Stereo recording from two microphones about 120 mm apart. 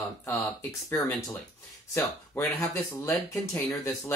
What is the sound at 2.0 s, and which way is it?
Speech, 20° left (ahead or behind).